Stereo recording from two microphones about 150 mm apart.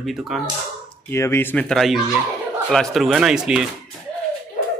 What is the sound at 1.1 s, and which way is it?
Speech, 15° left (ahead or behind).